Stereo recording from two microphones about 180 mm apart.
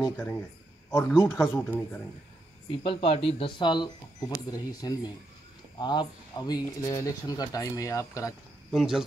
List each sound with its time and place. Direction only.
0.8 s a man's voice: 15° left (ahead or behind)
2.8 s speech: 30° left (ahead or behind)
8.7 s speech: 5° right (ahead or behind)